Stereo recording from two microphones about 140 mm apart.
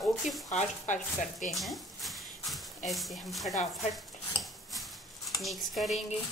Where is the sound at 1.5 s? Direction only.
Centre (ahead or behind).